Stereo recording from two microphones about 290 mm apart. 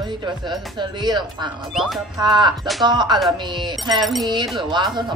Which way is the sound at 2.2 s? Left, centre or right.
Centre.